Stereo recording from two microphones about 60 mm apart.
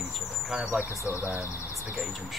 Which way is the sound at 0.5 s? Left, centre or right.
Centre.